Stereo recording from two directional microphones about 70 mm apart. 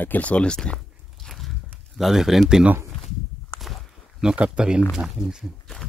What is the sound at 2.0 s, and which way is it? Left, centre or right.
Speech, centre.